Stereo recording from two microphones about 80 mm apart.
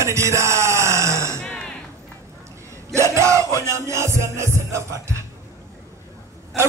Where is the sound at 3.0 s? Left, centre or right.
Right.